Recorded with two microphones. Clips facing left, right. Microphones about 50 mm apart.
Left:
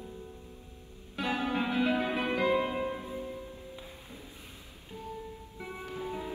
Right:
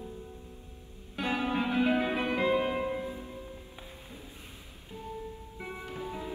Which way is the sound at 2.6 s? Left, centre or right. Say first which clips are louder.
Right 1 dB; centre.